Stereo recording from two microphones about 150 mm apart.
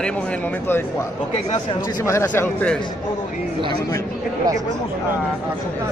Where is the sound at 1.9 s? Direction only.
20° left (ahead or behind).